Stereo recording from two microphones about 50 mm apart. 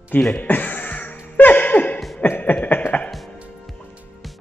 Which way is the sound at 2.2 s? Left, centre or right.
Left.